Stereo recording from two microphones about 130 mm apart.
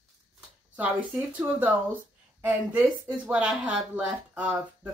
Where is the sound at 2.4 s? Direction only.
10° right (ahead or behind).